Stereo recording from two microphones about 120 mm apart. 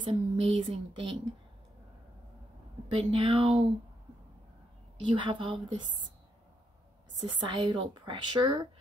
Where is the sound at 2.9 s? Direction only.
45° right (ahead or behind).